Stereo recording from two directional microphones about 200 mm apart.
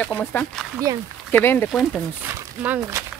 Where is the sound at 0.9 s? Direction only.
15° right (ahead or behind).